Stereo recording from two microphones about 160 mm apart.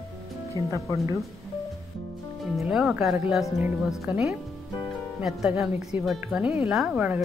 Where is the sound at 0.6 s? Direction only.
25° right (ahead or behind).